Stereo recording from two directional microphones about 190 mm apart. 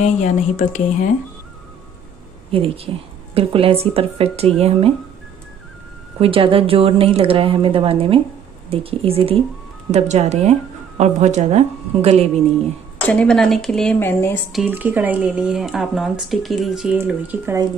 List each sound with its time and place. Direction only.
0.0 s speech: 40° left (ahead or behind)
2.5 s speech: 30° right (ahead or behind)
6.1 s speech: 30° right (ahead or behind)
13.0 s speech: 5° left (ahead or behind)
14.5 s speech: 5° right (ahead or behind)